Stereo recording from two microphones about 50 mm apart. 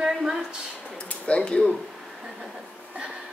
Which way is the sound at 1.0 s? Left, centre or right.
Left.